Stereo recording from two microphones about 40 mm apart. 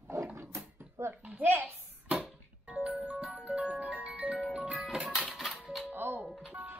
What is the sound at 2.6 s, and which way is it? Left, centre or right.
Music, right.